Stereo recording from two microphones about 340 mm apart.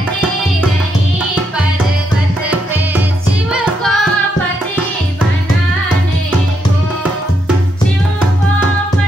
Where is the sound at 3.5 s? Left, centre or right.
Centre.